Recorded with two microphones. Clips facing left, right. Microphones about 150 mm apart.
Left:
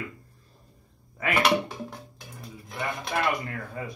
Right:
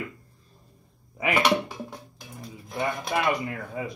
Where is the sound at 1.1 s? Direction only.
15° right (ahead or behind).